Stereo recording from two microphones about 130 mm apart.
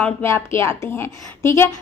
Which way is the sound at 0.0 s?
20° left (ahead or behind).